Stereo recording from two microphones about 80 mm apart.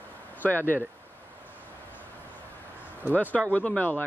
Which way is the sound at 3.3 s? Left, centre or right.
Centre.